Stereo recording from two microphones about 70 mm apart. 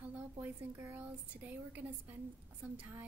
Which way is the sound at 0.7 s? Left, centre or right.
Right.